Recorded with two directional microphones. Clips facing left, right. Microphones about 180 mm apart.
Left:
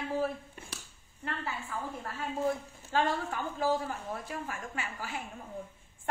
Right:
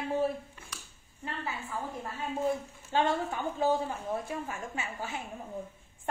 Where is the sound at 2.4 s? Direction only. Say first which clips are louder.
Right 1 dB; 25° right (ahead or behind).